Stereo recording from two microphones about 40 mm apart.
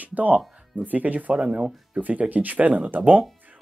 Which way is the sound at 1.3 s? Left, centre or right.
Right.